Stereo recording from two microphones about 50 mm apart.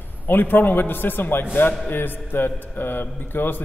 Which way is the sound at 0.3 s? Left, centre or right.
Left.